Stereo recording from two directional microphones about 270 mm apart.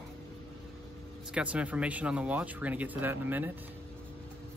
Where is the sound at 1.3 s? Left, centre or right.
Centre.